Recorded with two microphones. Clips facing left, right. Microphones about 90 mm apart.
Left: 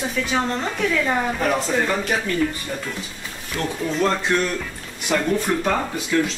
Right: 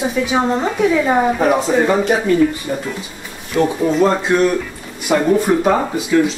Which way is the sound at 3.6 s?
10° right (ahead or behind).